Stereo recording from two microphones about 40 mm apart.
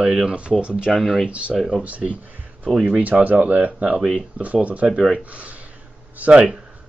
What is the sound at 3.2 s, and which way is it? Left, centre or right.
Speech, right.